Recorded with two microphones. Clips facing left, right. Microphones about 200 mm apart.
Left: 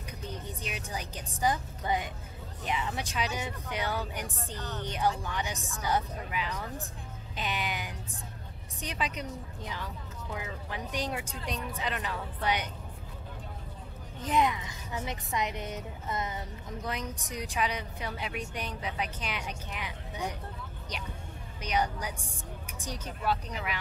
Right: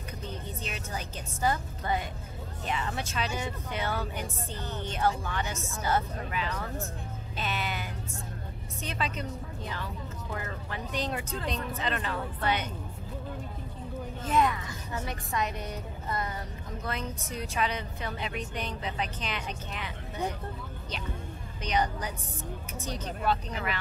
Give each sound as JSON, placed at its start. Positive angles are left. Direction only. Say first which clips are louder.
{"t": 0.6, "sound": "speech", "louder": "right 1 dB", "side_deg": 10}
{"t": 4.6, "sound": "speech", "louder": "even", "side_deg": -15}
{"t": 4.8, "sound": "speech", "louder": "right 1 dB", "side_deg": 15}
{"t": 7.3, "sound": "music", "louder": "right 1 dB", "side_deg": 15}
{"t": 8.8, "sound": "speech", "louder": "right 1 dB", "side_deg": 15}
{"t": 14.2, "sound": "a woman's voice", "louder": "right 1 dB", "side_deg": 15}
{"t": 21.6, "sound": "speech", "louder": "right 1 dB", "side_deg": 10}